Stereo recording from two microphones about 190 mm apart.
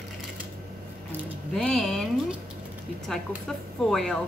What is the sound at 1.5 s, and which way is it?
Speech, centre (ahead or behind).